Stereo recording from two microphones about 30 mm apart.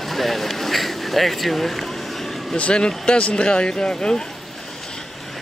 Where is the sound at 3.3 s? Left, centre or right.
Left.